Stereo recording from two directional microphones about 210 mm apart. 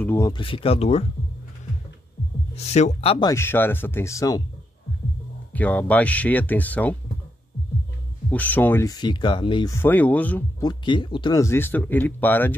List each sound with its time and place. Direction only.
0.0 s speech: 10° left (ahead or behind)
0.3 s speech: 25° left (ahead or behind)
2.5 s speech: 30° left (ahead or behind); by 4.4 s 15° left (ahead or behind)
5.5 s speech: 5° left (ahead or behind)
8.3 s speech: 5° left (ahead or behind)
9.8 s speech: 10° left (ahead or behind)
10.6 s speech: 20° left (ahead or behind)